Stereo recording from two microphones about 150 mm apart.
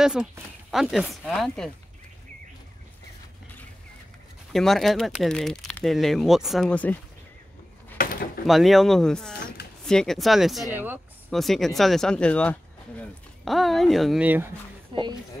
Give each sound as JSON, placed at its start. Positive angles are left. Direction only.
{"t": 0.0, "sound": "speech", "side_deg": -5}
{"t": 4.5, "sound": "speech", "side_deg": 0}
{"t": 8.0, "sound": "a sound", "side_deg": 80}
{"t": 8.5, "sound": "speech", "side_deg": 0}
{"t": 10.7, "sound": "speech", "side_deg": -10}
{"t": 11.2, "sound": "speech", "side_deg": 0}
{"t": 14.2, "sound": "speech", "side_deg": -10}
{"t": 14.9, "sound": "speech", "side_deg": -35}